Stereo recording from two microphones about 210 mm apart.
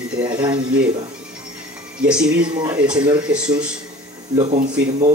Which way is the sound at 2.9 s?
20° right (ahead or behind).